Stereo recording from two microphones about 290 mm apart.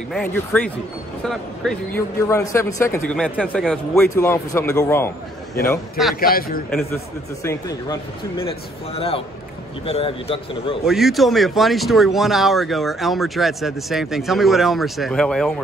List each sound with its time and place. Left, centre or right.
0.1 s speech: centre
6.1 s a man's voice: left
7.4 s speech: centre
10.9 s speech: centre